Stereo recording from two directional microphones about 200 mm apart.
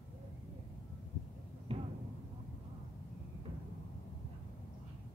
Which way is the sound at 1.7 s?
30° right (ahead or behind).